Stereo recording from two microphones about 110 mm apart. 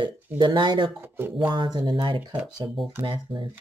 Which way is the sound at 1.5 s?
45° right (ahead or behind).